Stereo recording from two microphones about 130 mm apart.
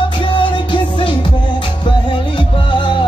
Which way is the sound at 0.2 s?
40° left (ahead or behind).